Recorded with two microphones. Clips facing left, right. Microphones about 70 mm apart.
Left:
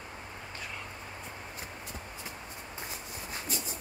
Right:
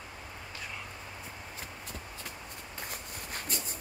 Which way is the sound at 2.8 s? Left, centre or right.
Right.